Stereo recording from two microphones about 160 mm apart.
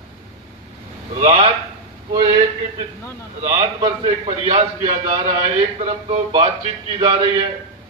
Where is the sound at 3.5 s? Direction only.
40° right (ahead or behind).